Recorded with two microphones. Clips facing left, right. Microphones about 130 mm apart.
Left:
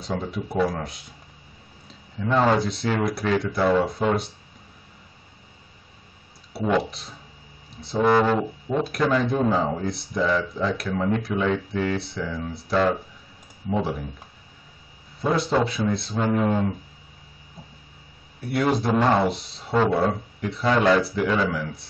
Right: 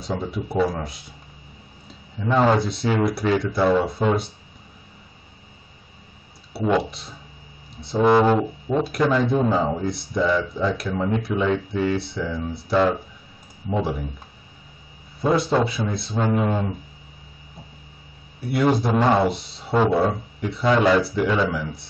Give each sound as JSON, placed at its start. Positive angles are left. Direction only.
{"t": 0.0, "sound": "speech", "side_deg": 0}
{"t": 2.1, "sound": "speech", "side_deg": -5}
{"t": 6.5, "sound": "speech", "side_deg": 0}
{"t": 8.0, "sound": "speech", "side_deg": -15}
{"t": 8.4, "sound": "speech", "side_deg": -5}
{"t": 15.2, "sound": "speech", "side_deg": 0}
{"t": 18.5, "sound": "speech", "side_deg": 0}